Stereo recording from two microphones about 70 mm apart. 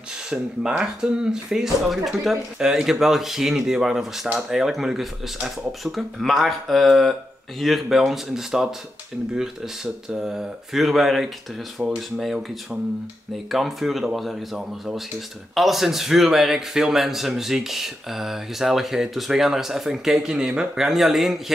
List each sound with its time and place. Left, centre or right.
0.3 s speech: centre
10.0 s speech: centre
11.8 s speech: centre
13.5 s speech: centre